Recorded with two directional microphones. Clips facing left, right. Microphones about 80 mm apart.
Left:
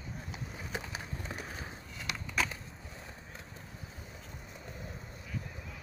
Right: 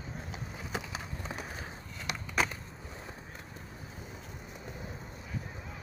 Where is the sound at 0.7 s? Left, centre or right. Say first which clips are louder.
Right 2 dB; right.